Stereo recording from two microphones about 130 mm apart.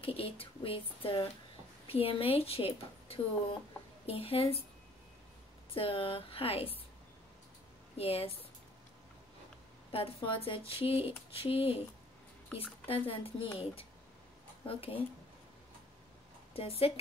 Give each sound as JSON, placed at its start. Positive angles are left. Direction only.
{"t": 0.0, "sound": "speech", "side_deg": 45}
{"t": 5.8, "sound": "speech", "side_deg": 45}
{"t": 8.0, "sound": "speech", "side_deg": 45}
{"t": 9.8, "sound": "speech", "side_deg": 45}
{"t": 12.5, "sound": "speech", "side_deg": 10}
{"t": 12.8, "sound": "speech", "side_deg": 45}
{"t": 16.5, "sound": "speech", "side_deg": 50}